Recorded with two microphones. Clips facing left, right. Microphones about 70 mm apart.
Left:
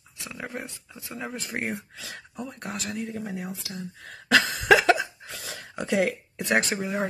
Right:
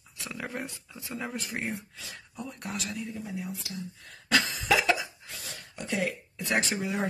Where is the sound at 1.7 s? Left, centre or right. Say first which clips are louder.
Left 3 dB; left.